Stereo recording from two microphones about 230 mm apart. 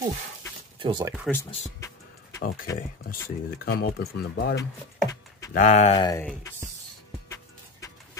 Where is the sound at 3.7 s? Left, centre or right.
Left.